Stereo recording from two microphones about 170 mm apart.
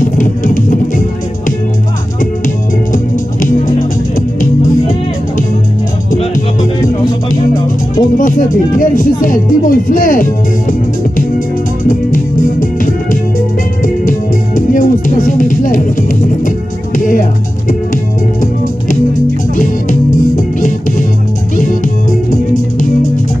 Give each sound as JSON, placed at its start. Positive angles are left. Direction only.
{"t": 0.0, "sound": "music", "side_deg": 50}
{"t": 2.4, "sound": "music", "side_deg": 50}
{"t": 7.9, "sound": "speech", "side_deg": 50}
{"t": 10.7, "sound": "music", "side_deg": 55}
{"t": 19.5, "sound": "music", "side_deg": 50}